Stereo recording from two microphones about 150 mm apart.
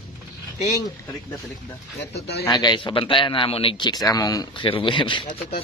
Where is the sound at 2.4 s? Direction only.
30° left (ahead or behind).